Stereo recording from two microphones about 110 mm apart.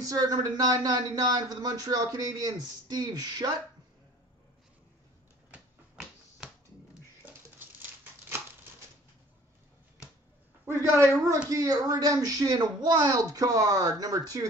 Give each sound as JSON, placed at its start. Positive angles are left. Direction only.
{"t": 0.0, "sound": "speech", "side_deg": -35}
{"t": 7.5, "sound": "crumpling", "side_deg": -20}
{"t": 10.6, "sound": "a sound", "side_deg": -25}
{"t": 11.4, "sound": "speech", "side_deg": -35}